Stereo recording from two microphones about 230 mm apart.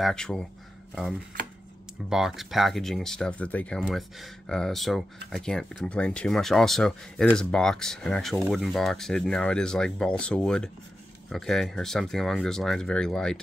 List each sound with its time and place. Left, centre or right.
0.0 s speech: centre
2.0 s speech: centre